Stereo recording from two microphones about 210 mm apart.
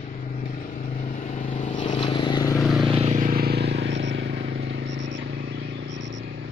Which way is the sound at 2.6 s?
Centre (ahead or behind).